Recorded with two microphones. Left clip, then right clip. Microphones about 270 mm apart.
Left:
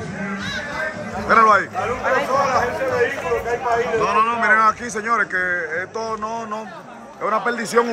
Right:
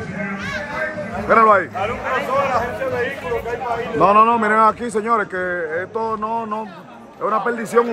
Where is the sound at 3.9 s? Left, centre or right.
Centre.